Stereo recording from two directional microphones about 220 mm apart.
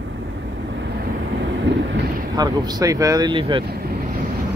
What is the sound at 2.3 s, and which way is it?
Speech, 15° right (ahead or behind).